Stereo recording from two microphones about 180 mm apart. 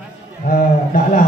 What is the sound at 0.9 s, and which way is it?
Speech, 50° left (ahead or behind).